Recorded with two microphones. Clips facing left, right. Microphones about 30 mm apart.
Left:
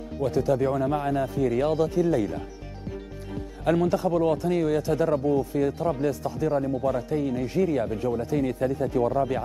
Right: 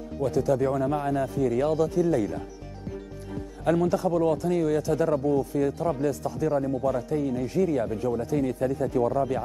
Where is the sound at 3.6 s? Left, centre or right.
Left.